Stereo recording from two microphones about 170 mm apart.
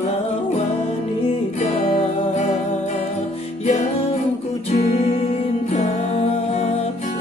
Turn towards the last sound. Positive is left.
turn(degrees=35)  # may be behind; listen again after turning